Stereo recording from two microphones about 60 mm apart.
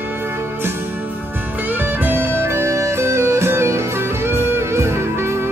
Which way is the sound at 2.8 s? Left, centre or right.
Right.